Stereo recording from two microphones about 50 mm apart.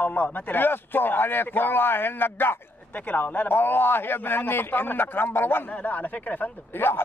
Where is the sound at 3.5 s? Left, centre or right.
Left.